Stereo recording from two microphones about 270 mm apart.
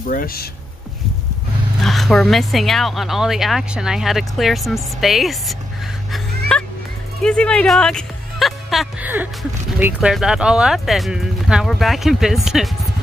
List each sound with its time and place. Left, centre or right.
0.0 s speech: left
1.8 s speech: centre
6.5 s music: centre
7.2 s speech: centre